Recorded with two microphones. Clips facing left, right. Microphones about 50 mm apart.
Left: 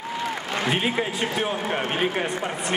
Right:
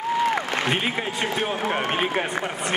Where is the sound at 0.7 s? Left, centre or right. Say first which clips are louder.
Left 1 dB; centre.